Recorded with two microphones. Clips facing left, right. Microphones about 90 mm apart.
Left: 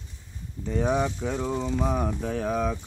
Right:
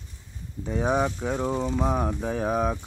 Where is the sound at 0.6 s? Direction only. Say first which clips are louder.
Right 1 dB; 5° right (ahead or behind).